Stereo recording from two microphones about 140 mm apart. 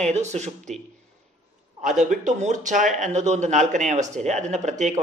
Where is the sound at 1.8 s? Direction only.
65° right (ahead or behind).